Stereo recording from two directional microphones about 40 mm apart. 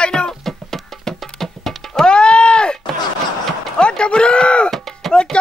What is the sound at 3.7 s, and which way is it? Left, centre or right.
Speech, left.